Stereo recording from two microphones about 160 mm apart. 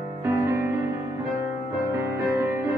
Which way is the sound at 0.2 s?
15° right (ahead or behind).